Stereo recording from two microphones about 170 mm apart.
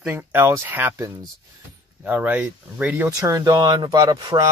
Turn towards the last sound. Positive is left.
turn(degrees=-25)  # may be behind; listen again after turning